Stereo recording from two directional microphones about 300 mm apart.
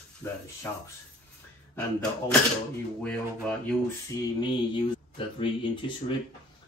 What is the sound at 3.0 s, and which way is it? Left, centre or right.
Speech, centre.